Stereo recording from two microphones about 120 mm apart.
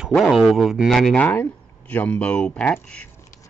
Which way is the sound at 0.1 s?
Centre (ahead or behind).